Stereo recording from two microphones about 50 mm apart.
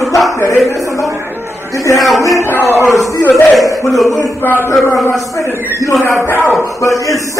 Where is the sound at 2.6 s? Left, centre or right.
Left.